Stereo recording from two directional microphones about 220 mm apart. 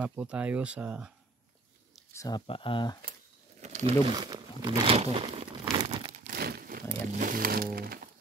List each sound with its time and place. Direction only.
0.0 s speech: 5° right (ahead or behind)
2.1 s speech: 20° left (ahead or behind)
3.6 s crumpling: 30° right (ahead or behind)
6.2 s music: 45° right (ahead or behind)